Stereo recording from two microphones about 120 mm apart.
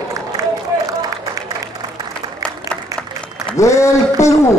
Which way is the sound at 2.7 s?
30° right (ahead or behind).